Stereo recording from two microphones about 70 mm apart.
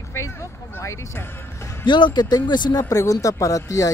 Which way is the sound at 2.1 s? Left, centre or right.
Left.